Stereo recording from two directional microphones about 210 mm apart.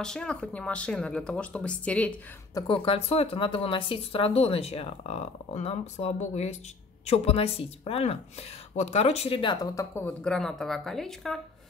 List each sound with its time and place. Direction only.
0.0 s speech: 5° left (ahead or behind)
2.5 s speech: 25° left (ahead or behind)
9.9 s speech: 5° left (ahead or behind)